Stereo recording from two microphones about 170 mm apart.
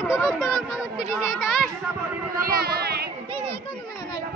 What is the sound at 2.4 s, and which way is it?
Speech, 60° right (ahead or behind).